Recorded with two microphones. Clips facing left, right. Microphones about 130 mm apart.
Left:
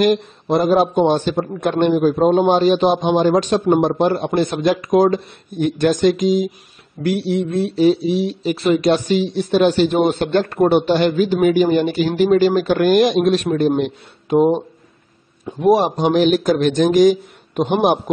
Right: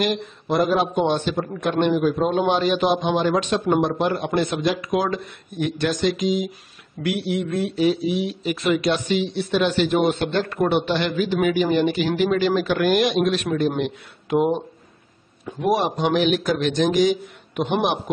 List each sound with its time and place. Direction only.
0.0 s speech: 40° left (ahead or behind)
14.3 s speech: 25° left (ahead or behind)